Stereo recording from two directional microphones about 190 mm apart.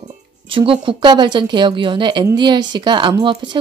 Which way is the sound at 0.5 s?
25° right (ahead or behind).